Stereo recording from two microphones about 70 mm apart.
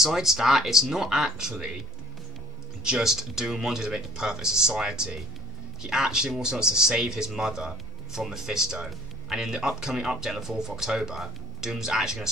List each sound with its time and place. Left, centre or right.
0.0 s speech: centre
2.8 s speech: centre